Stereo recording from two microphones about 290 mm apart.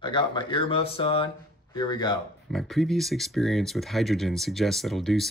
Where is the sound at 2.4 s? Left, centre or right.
Centre.